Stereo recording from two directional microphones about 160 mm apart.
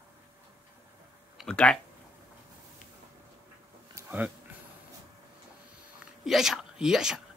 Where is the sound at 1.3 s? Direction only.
5° left (ahead or behind).